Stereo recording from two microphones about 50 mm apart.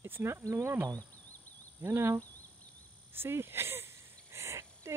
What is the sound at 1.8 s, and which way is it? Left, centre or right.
Speech, right.